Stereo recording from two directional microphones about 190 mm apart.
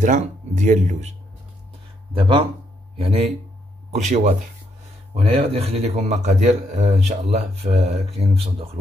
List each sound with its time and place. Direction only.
0.0 s a man's voice: 40° right (ahead or behind)
2.1 s a man's voice: 25° right (ahead or behind)